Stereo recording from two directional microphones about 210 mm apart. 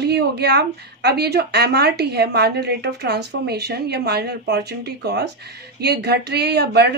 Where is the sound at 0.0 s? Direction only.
50° right (ahead or behind).